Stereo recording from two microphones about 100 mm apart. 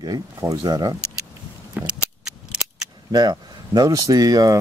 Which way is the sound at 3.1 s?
45° right (ahead or behind).